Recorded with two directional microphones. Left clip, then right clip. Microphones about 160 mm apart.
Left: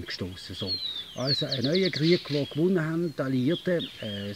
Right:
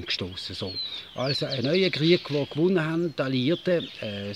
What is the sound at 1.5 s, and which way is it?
Speech, 20° right (ahead or behind).